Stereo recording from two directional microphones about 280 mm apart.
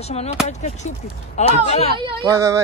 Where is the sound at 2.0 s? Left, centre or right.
Centre.